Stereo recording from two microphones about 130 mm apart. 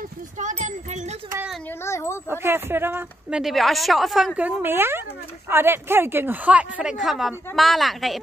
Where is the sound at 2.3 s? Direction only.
15° right (ahead or behind).